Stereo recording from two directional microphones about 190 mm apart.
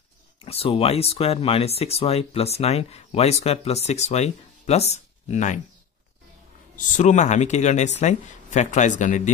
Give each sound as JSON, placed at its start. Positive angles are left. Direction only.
{"t": 0.4, "sound": "speech", "side_deg": 30}
{"t": 7.0, "sound": "speech", "side_deg": 40}